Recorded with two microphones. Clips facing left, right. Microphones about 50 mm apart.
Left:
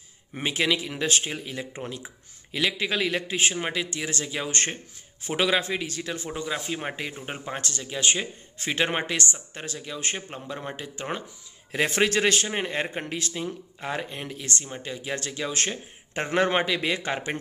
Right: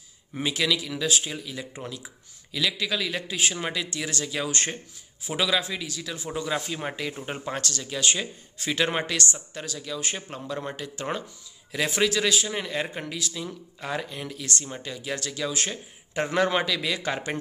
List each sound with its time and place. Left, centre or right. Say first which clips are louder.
0.4 s a man's voice: left 1 dB; left
5.3 s a man's voice: left 2 dB; left
6.3 s speech: right 4 dB; centre
6.7 s speech: even; left
10.5 s speech: right 2 dB; centre
11.7 s a man's voice: left 1 dB; left